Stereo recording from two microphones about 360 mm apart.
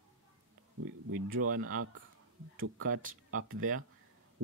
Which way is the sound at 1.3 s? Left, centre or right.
Right.